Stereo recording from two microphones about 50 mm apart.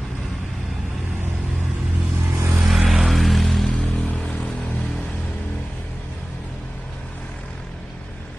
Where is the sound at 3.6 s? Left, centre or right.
Centre.